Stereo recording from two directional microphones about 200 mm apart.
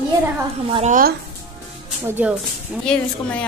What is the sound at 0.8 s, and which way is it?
Speech, 40° right (ahead or behind).